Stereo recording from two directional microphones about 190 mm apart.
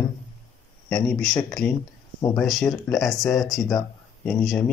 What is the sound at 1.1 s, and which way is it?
Speech, 5° left (ahead or behind).